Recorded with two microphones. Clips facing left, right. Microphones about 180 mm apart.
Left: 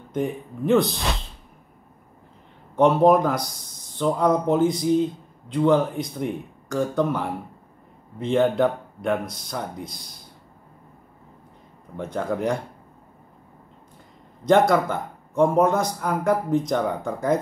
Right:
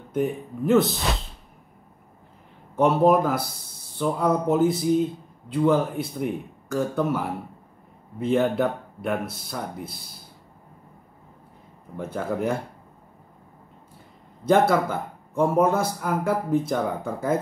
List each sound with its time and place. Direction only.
0.1 s speech: 5° right (ahead or behind)
2.7 s speech: 5° right (ahead or behind)
12.0 s speech: 5° right (ahead or behind)
14.4 s speech: 5° right (ahead or behind)